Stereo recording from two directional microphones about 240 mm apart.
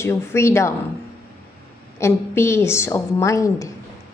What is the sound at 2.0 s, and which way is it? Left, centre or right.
Speech, centre.